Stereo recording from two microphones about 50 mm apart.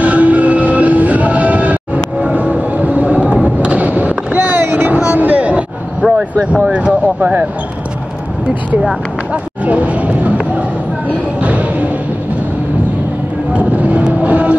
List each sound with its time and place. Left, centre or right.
0.0 s vehicle: right
2.3 s a sound: right
3.4 s skateboard: right
6.7 s speech: right
9.3 s a sound: right
13.5 s train: right